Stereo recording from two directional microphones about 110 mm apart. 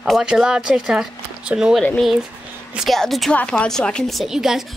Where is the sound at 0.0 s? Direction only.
5° right (ahead or behind).